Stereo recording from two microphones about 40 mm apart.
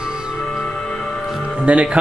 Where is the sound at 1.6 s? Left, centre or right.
Right.